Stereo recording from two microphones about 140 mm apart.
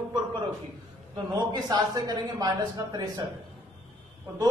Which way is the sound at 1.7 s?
30° right (ahead or behind).